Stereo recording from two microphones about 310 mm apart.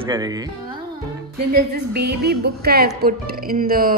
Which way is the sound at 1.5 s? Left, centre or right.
Right.